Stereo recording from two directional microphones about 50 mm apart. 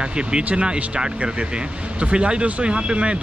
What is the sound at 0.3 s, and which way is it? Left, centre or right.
A man's voice, right.